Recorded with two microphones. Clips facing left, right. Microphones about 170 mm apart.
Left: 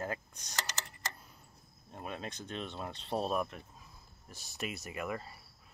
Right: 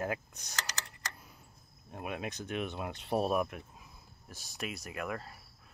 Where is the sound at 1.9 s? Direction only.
10° right (ahead or behind).